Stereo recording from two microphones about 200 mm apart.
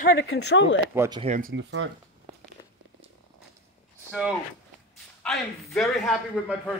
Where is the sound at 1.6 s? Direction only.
65° right (ahead or behind).